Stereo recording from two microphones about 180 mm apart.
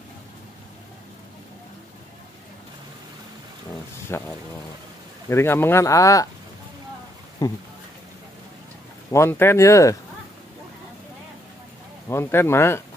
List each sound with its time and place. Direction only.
4.1 s speech: 15° left (ahead or behind)
5.3 s speech: 15° left (ahead or behind)
7.4 s speech: 20° left (ahead or behind)
9.1 s speech: 15° left (ahead or behind)
12.1 s speech: 15° left (ahead or behind)